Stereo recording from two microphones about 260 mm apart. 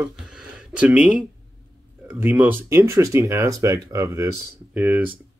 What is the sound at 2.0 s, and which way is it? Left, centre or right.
Speech, centre.